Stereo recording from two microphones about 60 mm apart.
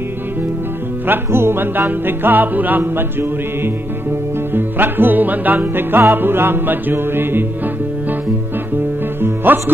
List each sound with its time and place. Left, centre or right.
1.0 s music: right
9.2 s music: right